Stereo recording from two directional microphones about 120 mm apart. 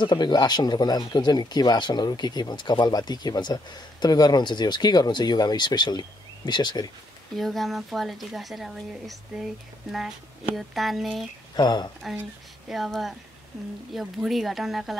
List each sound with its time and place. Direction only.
0.0 s speech: 35° left (ahead or behind)
7.3 s a woman's voice: centre (ahead or behind)
11.5 s speech: 40° left (ahead or behind)
12.6 s a woman's voice: centre (ahead or behind)